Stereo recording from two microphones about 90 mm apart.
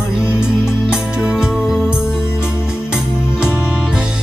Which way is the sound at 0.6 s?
10° right (ahead or behind).